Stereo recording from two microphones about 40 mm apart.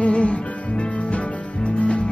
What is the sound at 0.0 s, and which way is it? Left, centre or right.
Music, left.